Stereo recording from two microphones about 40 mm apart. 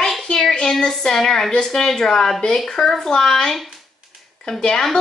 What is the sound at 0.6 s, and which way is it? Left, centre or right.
A woman's voice, centre.